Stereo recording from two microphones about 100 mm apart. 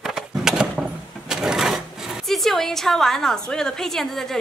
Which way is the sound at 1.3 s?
5° right (ahead or behind).